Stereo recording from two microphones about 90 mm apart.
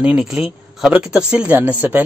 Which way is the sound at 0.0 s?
10° right (ahead or behind).